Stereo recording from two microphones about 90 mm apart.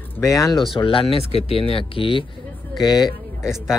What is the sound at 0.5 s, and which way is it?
Speech, 65° left (ahead or behind).